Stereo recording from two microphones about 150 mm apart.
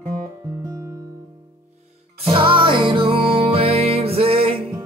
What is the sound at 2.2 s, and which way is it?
Music, 35° right (ahead or behind).